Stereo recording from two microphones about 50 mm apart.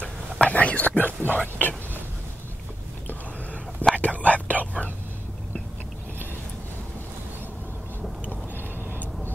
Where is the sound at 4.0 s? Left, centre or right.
Left.